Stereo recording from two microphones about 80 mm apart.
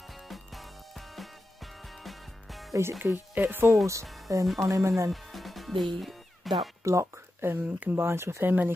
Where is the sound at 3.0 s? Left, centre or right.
Right.